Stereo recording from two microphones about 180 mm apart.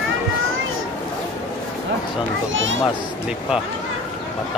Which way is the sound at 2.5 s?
90° right.